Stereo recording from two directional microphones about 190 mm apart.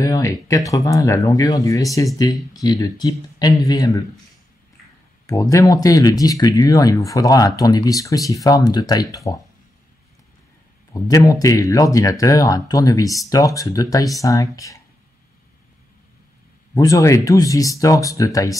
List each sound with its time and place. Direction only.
0.0 s speech: 15° left (ahead or behind)
5.2 s speech: 15° left (ahead or behind)
10.9 s speech: 20° left (ahead or behind)
16.7 s speech: 15° left (ahead or behind)